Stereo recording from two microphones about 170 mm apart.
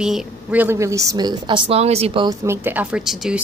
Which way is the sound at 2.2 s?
15° right (ahead or behind).